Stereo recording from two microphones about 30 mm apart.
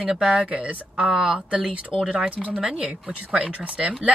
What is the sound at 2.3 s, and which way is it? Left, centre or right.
Speech, right.